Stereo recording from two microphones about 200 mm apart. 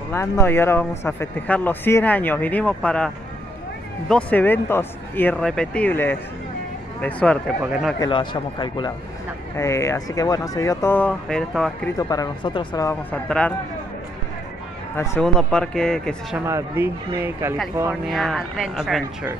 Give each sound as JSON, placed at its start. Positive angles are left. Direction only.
{"t": 0.1, "sound": "speech", "side_deg": 10}
{"t": 4.1, "sound": "speech", "side_deg": 10}
{"t": 8.0, "sound": "speech", "side_deg": 25}
{"t": 12.0, "sound": "speech", "side_deg": 20}
{"t": 13.1, "sound": "speech", "side_deg": 5}
{"t": 15.0, "sound": "speech", "side_deg": 5}
{"t": 16.3, "sound": "speech", "side_deg": -10}
{"t": 18.0, "sound": "speech", "side_deg": 0}